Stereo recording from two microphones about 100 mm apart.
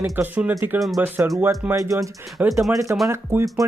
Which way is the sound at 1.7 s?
35° right (ahead or behind).